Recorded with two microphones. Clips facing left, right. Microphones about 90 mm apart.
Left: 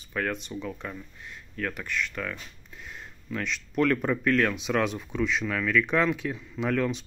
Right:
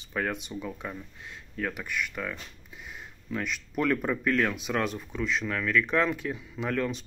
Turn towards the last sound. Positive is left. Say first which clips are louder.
# left 3 dB
turn(degrees=0)  # may be behind; listen again after turning